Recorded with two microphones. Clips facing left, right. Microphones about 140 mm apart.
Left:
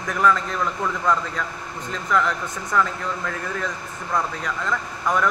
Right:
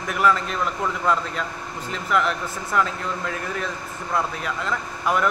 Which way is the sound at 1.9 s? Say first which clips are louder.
Even; 15° right (ahead or behind).